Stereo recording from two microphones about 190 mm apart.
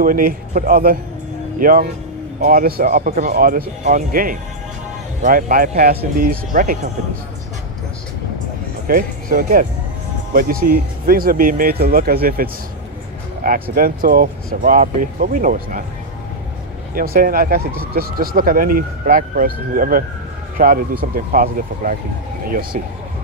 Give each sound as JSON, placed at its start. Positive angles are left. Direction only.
{"t": 0.0, "sound": "speech", "side_deg": -45}
{"t": 8.8, "sound": "speech", "side_deg": -45}
{"t": 16.9, "sound": "speech", "side_deg": -50}